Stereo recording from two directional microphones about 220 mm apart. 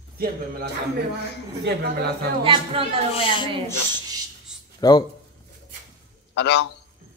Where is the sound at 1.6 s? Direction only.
50° right (ahead or behind).